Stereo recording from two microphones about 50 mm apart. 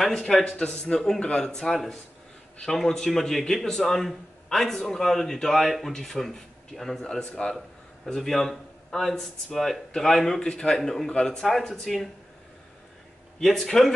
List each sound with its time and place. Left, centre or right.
0.0 s a man's voice: centre
0.5 s a man's voice: centre
13.4 s a man's voice: centre